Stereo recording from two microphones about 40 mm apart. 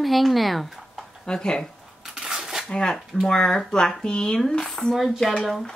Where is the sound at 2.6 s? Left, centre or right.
Left.